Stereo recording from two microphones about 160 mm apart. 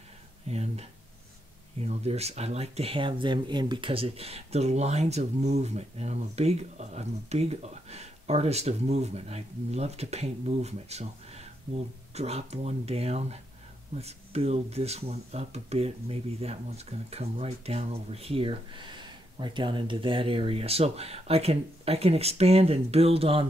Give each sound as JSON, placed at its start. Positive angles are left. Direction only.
{"t": 0.5, "sound": "speech", "side_deg": -40}